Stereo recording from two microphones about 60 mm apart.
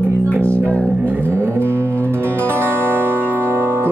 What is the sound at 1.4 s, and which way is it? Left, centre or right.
Music, right.